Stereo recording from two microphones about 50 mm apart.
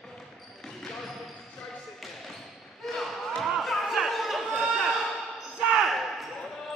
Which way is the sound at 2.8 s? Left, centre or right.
Centre.